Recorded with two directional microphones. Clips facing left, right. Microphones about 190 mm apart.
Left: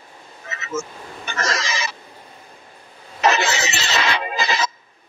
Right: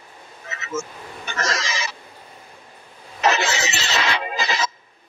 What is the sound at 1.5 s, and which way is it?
Fowl, 60° left (ahead or behind).